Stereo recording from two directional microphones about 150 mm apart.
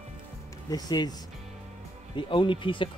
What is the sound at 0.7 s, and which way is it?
Speech, 25° left (ahead or behind).